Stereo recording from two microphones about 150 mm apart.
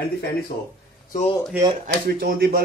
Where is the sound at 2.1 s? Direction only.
90° right.